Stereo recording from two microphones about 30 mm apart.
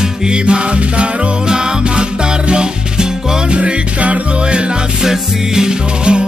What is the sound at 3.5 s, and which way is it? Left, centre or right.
Music, right.